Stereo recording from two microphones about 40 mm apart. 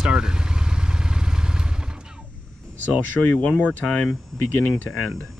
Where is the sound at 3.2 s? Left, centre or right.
Centre.